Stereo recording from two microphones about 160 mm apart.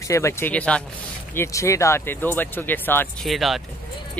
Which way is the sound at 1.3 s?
20° left (ahead or behind).